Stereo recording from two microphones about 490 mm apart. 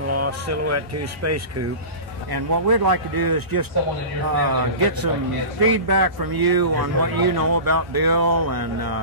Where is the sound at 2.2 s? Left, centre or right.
Right.